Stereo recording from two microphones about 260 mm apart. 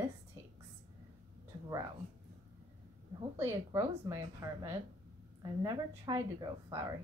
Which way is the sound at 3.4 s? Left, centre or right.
Centre.